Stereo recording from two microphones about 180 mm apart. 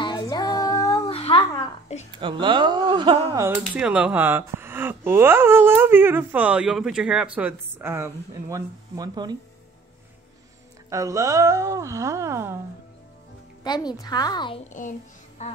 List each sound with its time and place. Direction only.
0.0 s music: 25° left (ahead or behind)
1.0 s babbling: 30° left (ahead or behind)
2.1 s speech: 25° right (ahead or behind)
3.4 s speech: 10° right (ahead or behind)
10.9 s speech: 15° right (ahead or behind)
13.7 s a woman's voice: 20° left (ahead or behind)
14.7 s music: 45° left (ahead or behind)